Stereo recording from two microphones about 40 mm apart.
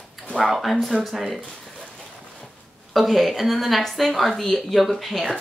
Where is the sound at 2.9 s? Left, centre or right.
Centre.